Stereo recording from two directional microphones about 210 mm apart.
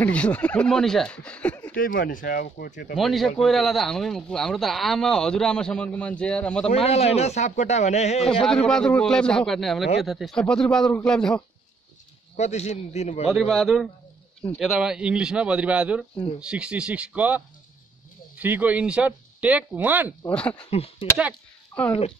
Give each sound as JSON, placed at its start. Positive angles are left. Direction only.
{"t": 0.0, "sound": "a man's voice", "side_deg": 5}
{"t": 1.8, "sound": "speech", "side_deg": 40}
{"t": 3.0, "sound": "a man's voice", "side_deg": 0}
{"t": 6.7, "sound": "speech", "side_deg": 30}
{"t": 8.3, "sound": "a man's voice", "side_deg": 5}
{"t": 12.4, "sound": "speech", "side_deg": 30}
{"t": 13.3, "sound": "a man's voice", "side_deg": 0}
{"t": 18.4, "sound": "speech", "side_deg": -10}
{"t": 20.2, "sound": "a man's voice", "side_deg": 5}
{"t": 20.7, "sound": "speech", "side_deg": 25}
{"t": 21.7, "sound": "speech", "side_deg": 15}